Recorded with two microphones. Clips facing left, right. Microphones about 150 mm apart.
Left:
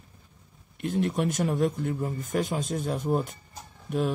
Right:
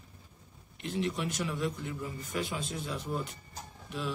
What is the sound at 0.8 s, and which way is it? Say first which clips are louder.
Speech: left 7 dB; 50° left (ahead or behind).